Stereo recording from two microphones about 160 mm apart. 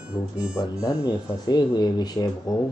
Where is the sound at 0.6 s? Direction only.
20° left (ahead or behind).